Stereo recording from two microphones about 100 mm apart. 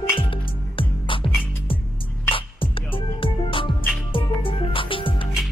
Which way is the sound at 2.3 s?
60° left (ahead or behind).